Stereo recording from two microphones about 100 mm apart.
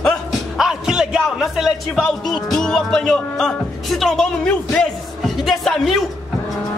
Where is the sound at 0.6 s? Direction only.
5° right (ahead or behind).